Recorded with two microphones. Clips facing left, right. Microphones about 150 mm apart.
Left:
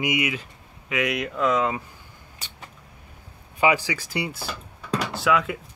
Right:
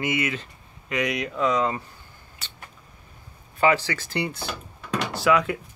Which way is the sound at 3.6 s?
10° left (ahead or behind).